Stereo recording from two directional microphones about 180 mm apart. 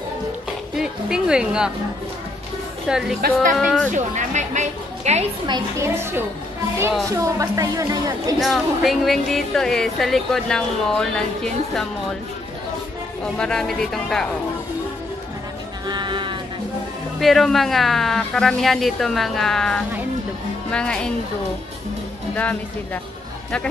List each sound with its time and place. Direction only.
0.7 s speech: 5° right (ahead or behind)
2.9 s speech: 5° right (ahead or behind)
3.2 s speech: 60° right (ahead or behind)
3.5 s speech: 5° left (ahead or behind)
3.9 s a woman's voice: 40° right (ahead or behind)
5.5 s a woman's voice: 15° right (ahead or behind)
8.4 s speech: centre (ahead or behind)
13.4 s speech: 5° left (ahead or behind)
15.9 s music: 25° right (ahead or behind)
17.2 s speech: centre (ahead or behind)
22.3 s speech: 5° left (ahead or behind)